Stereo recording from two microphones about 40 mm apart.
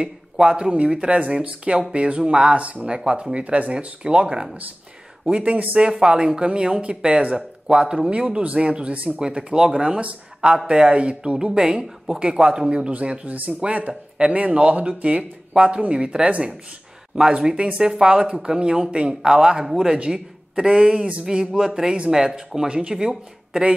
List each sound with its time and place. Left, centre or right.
0.5 s speech: right
2.9 s speech: right
5.4 s speech: right
5.8 s speech: right
9.2 s speech: right
19.2 s speech: centre